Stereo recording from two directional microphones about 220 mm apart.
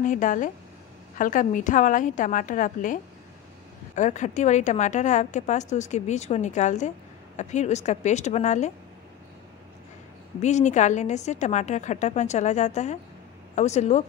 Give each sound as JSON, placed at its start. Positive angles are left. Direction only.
{"t": 0.0, "sound": "a woman's voice", "side_deg": 35}
{"t": 10.4, "sound": "a woman's voice", "side_deg": 30}